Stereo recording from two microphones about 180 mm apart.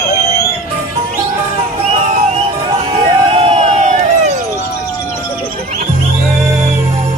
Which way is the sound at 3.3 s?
30° right (ahead or behind).